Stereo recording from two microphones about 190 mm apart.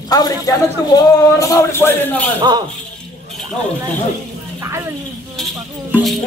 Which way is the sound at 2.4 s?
25° right (ahead or behind).